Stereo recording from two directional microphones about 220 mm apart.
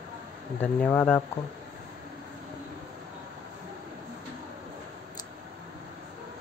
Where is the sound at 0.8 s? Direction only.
5° left (ahead or behind).